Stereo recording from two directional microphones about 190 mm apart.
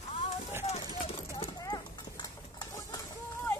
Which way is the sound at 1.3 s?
20° left (ahead or behind).